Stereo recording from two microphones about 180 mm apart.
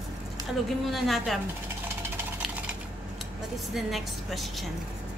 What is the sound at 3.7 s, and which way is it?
Speech, centre (ahead or behind).